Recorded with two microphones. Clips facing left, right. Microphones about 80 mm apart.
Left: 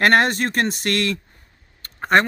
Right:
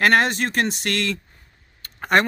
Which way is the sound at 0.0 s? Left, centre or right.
Left.